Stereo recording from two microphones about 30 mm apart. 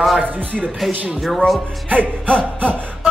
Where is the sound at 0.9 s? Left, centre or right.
Right.